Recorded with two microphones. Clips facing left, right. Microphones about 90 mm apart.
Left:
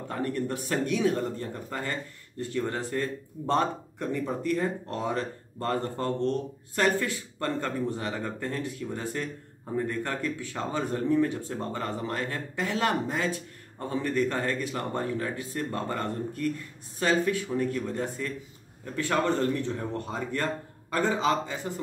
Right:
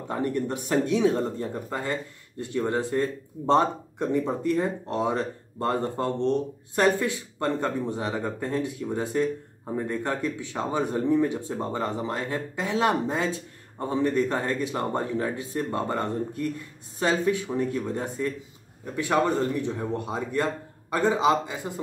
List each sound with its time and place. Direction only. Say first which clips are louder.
0.1 s a man's voice: right 3 dB; 20° right (ahead or behind)